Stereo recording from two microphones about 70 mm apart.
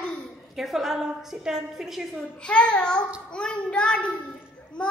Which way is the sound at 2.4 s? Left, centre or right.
Centre.